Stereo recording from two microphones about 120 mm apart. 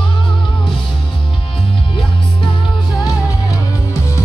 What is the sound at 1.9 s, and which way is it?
Music, 45° left (ahead or behind).